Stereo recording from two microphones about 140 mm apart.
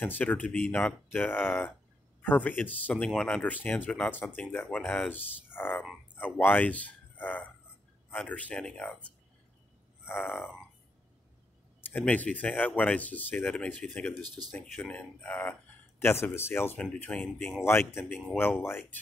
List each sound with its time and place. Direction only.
0.0 s a man's voice: 10° left (ahead or behind)
11.8 s speech: 10° left (ahead or behind)